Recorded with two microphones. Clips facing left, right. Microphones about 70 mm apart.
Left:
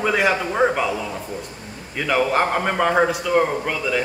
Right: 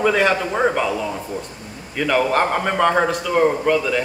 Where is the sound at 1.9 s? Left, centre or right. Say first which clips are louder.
Right 1 dB; centre.